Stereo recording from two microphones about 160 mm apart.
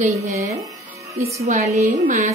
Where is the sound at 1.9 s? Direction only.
50° right (ahead or behind).